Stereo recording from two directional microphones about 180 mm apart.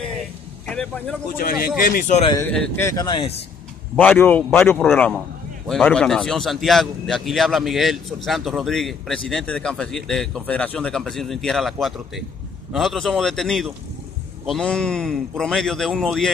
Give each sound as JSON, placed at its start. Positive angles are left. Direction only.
{"t": 0.7, "sound": "vehicle", "side_deg": 5}
{"t": 1.4, "sound": "a man's voice", "side_deg": 55}
{"t": 2.4, "sound": "speech", "side_deg": 5}
{"t": 3.9, "sound": "a man's voice", "side_deg": 10}